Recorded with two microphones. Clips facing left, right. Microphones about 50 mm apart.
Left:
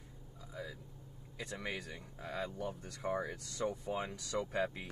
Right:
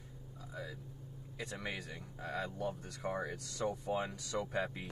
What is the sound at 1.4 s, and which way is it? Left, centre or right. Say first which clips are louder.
Speech: even; centre.